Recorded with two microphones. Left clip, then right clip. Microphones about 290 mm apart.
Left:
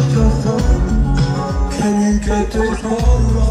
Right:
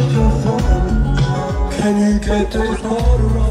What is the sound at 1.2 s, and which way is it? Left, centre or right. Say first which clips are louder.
Music: even; centre.